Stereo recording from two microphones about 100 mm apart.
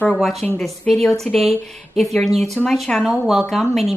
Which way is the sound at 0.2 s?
Centre (ahead or behind).